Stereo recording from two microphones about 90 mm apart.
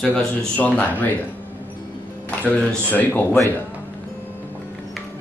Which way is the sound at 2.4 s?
10° left (ahead or behind).